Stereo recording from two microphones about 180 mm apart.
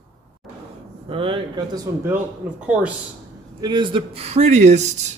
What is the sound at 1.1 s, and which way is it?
Speech, 30° right (ahead or behind).